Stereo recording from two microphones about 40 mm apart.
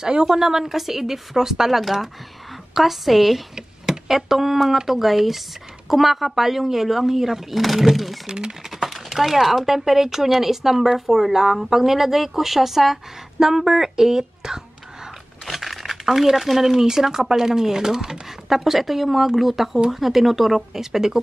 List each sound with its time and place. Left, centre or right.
0.0 s speech: centre
8.3 s speech: centre
8.6 s speech: centre
15.4 s speech: centre